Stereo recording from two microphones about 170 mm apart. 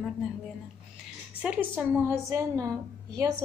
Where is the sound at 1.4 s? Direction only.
10° right (ahead or behind).